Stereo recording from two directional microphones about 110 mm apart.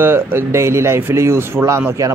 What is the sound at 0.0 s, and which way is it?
Speech, 20° right (ahead or behind).